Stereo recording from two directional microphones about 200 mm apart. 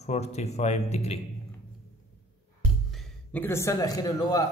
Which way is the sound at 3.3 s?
10° left (ahead or behind).